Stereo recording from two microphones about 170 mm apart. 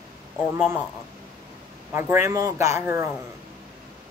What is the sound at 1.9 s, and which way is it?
Speech, 15° right (ahead or behind).